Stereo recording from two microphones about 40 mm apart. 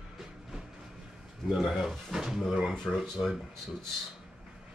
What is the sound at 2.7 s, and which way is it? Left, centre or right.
Speech, centre.